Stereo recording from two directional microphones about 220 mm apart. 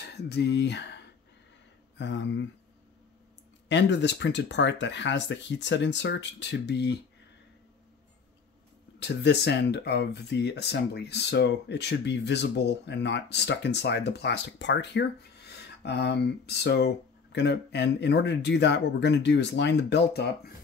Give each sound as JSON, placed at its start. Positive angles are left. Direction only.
{"t": 0.1, "sound": "speech", "side_deg": 50}
{"t": 3.6, "sound": "speech", "side_deg": 55}
{"t": 9.0, "sound": "speech", "side_deg": 50}